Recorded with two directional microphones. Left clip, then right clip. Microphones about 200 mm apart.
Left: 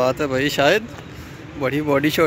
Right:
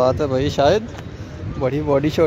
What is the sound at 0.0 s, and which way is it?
Speech, 5° right (ahead or behind).